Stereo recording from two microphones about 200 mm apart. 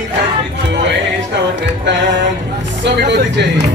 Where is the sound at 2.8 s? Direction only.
60° right (ahead or behind).